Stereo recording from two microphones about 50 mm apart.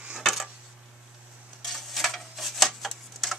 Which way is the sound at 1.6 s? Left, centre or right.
Centre.